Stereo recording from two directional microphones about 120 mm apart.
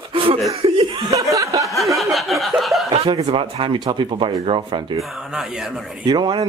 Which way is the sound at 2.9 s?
55° right (ahead or behind).